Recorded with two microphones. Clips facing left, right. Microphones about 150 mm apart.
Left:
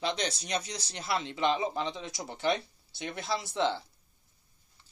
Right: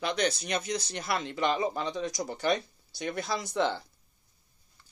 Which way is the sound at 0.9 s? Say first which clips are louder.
Left 4 dB; 55° right (ahead or behind).